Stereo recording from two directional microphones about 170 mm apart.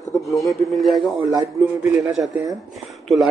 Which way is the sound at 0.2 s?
20° left (ahead or behind).